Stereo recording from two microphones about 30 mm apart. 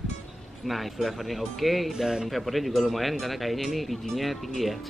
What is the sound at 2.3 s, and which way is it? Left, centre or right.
Speech, centre.